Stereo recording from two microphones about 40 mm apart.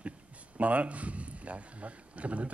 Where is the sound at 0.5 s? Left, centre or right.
Right.